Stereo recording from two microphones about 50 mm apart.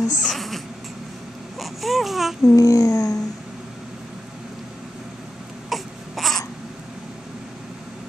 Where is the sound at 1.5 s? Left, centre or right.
Centre.